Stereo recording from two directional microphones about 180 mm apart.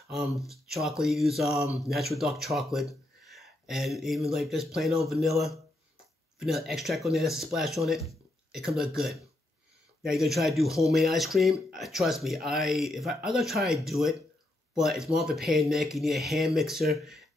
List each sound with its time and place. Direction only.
0.1 s speech: centre (ahead or behind)